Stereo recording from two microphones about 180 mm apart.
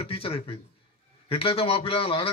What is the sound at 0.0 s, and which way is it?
A man's voice, 30° left (ahead or behind).